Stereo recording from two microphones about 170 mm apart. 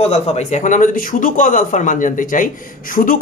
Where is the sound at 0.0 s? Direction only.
40° left (ahead or behind).